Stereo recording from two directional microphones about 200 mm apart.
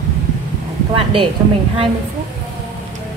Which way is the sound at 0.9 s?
25° right (ahead or behind).